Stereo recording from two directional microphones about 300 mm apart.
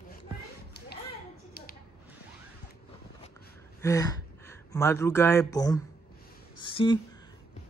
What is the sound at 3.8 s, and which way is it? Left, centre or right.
Speech, centre.